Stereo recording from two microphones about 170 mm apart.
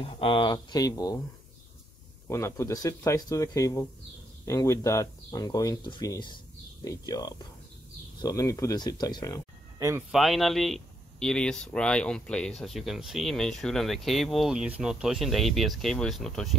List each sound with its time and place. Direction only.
0.0 s speech: 30° left (ahead or behind)
2.2 s speech: 15° left (ahead or behind)
9.8 s speech: 15° right (ahead or behind)
10.1 s speech: centre (ahead or behind)